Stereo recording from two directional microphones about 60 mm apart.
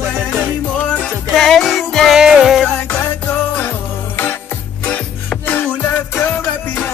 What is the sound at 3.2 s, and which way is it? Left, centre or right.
Music, left.